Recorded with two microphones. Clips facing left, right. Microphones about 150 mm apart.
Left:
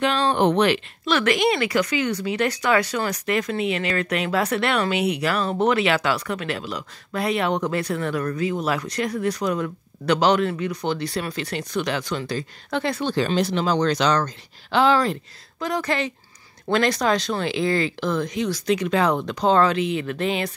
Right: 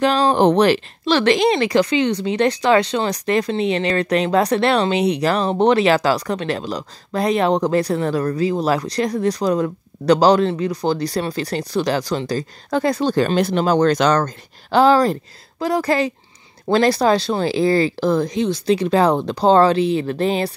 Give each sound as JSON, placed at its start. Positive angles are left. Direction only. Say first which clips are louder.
{"t": 0.0, "sound": "speech", "louder": "right 5 dB", "side_deg": -40}